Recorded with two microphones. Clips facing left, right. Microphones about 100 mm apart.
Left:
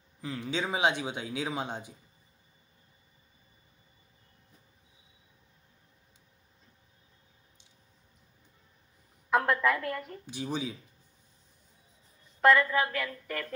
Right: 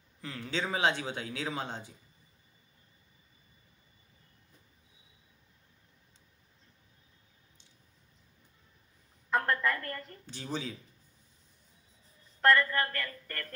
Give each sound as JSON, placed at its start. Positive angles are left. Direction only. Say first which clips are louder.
{"t": 0.2, "sound": "speech", "louder": "left 2 dB", "side_deg": 15}
{"t": 9.3, "sound": "a woman's voice", "louder": "left 4 dB", "side_deg": 5}
{"t": 12.4, "sound": "a woman's voice", "louder": "left 3 dB", "side_deg": 5}